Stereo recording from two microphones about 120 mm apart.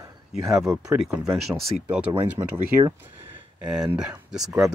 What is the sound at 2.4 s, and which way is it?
Speech, 40° right (ahead or behind).